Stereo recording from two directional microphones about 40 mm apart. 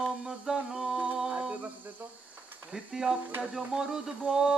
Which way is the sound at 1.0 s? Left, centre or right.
Centre.